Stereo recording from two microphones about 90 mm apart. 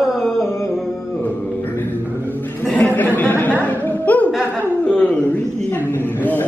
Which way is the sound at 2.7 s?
20° left (ahead or behind).